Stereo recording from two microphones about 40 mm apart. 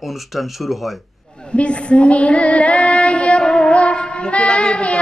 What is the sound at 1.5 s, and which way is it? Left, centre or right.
Female singing, left.